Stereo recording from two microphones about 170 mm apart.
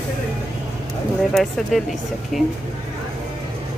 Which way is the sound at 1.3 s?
Centre (ahead or behind).